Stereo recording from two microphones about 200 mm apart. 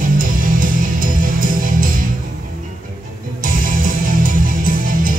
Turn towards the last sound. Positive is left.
turn(degrees=-45)  # may be behind; listen again after turning